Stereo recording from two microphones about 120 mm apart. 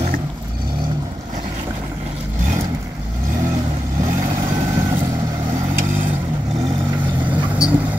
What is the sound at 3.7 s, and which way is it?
Vehicle, 85° right.